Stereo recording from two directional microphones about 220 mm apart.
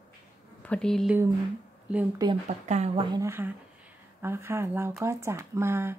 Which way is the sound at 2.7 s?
30° right (ahead or behind).